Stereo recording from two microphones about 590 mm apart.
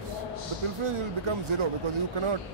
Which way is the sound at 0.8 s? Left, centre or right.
Right.